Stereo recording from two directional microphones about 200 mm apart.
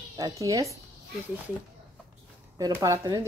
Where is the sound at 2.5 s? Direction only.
15° right (ahead or behind).